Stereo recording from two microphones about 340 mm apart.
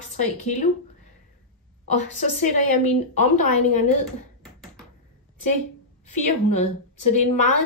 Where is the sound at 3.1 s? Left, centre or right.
Left.